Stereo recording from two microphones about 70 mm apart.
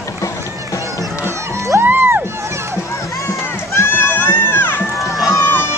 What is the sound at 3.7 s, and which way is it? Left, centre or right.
Crowd, left.